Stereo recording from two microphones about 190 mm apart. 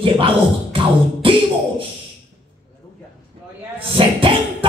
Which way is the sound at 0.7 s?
25° right (ahead or behind).